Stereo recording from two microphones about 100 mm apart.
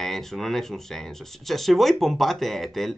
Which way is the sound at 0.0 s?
5° left (ahead or behind).